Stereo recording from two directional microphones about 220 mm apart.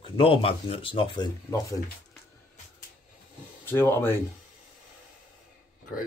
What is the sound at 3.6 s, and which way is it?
Speech, 10° left (ahead or behind).